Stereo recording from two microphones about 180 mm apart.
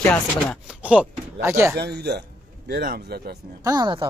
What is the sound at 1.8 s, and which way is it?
Speech, 65° right (ahead or behind).